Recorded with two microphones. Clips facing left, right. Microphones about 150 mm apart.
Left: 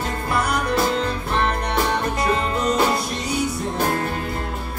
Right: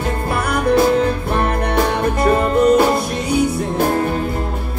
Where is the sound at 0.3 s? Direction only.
55° right (ahead or behind).